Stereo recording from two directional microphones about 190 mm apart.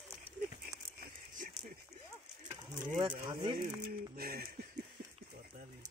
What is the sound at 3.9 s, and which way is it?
Speech, 55° right (ahead or behind).